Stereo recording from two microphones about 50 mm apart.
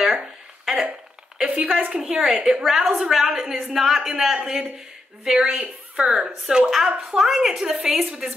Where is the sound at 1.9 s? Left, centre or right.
Centre.